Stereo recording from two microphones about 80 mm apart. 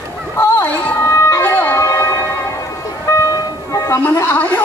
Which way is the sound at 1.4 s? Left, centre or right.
Left.